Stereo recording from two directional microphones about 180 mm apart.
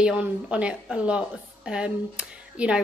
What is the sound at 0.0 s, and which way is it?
A woman's voice, 5° right (ahead or behind).